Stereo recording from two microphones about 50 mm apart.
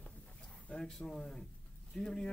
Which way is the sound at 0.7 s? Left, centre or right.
Left.